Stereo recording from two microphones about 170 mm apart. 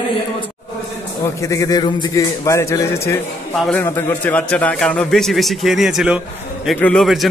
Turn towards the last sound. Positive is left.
turn(degrees=5)  # may be behind; listen again after turning